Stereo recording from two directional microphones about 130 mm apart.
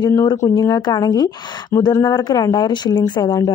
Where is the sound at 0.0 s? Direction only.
30° left (ahead or behind).